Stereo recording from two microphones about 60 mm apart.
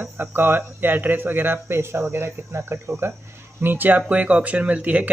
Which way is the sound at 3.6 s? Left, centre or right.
Right.